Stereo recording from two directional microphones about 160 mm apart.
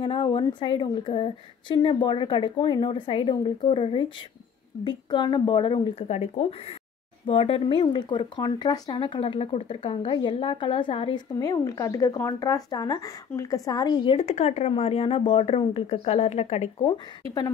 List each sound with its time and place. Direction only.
0.0 s a woman's voice: 30° left (ahead or behind)
11.3 s a woman's voice: 20° left (ahead or behind); by 16.7 s 45° left (ahead or behind)